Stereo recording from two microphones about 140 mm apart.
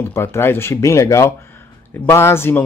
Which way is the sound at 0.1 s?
20° left (ahead or behind).